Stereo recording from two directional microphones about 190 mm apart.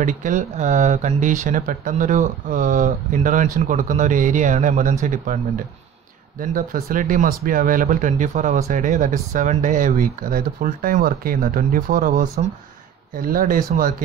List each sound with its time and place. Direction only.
0.0 s speech: 40° right (ahead or behind)